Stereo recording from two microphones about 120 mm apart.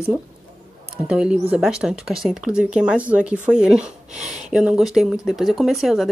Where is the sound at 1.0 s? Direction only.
10° right (ahead or behind).